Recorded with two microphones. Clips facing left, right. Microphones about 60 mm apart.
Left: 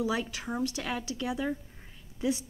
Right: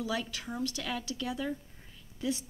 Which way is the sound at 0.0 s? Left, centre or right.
Left.